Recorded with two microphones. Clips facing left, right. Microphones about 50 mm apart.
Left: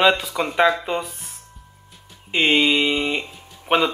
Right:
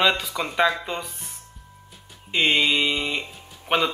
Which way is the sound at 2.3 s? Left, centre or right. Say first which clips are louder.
Left 3 dB; centre.